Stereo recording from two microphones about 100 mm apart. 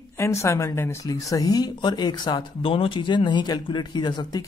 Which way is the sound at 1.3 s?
40° left (ahead or behind).